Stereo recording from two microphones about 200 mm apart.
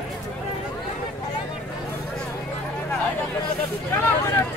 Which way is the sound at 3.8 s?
10° left (ahead or behind).